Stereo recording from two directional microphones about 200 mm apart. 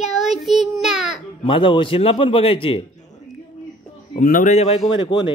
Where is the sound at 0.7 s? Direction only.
Centre (ahead or behind).